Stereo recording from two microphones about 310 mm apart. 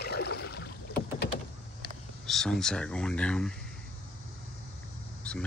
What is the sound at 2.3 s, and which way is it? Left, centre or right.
Speech, centre.